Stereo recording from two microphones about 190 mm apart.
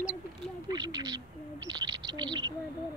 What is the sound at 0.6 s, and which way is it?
Speech, 20° right (ahead or behind).